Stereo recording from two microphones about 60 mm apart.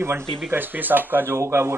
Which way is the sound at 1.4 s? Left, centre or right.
Right.